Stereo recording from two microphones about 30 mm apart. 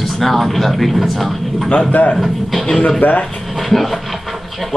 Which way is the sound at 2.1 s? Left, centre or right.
Centre.